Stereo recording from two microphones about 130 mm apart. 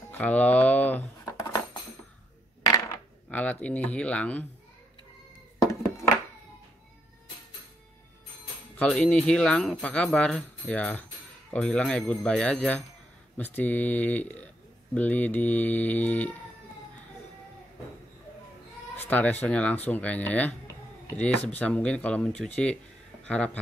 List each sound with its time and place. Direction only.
0.1 s speech: 10° left (ahead or behind)
1.3 s a sound: 25° left (ahead or behind)
3.3 s speech: 10° left (ahead or behind)
8.7 s speech: 10° left (ahead or behind)
18.9 s speech: 10° left (ahead or behind)